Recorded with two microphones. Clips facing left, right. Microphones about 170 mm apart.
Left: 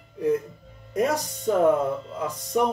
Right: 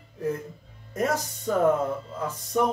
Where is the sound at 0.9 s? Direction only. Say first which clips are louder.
Left 3 dB; 15° left (ahead or behind).